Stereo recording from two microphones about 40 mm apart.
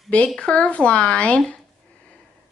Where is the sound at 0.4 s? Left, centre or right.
Left.